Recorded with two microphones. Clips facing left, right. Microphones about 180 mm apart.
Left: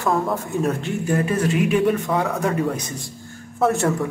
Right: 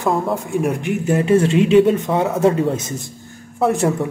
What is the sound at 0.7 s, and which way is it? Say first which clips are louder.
Speech: right 4 dB; 15° right (ahead or behind).